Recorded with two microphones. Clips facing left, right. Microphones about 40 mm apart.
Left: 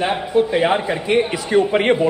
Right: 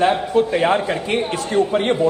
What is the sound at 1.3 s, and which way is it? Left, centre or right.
Speech, left.